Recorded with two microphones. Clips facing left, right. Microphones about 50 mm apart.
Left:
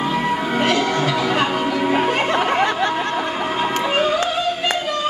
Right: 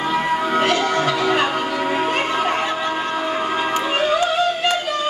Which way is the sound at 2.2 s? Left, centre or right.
Left.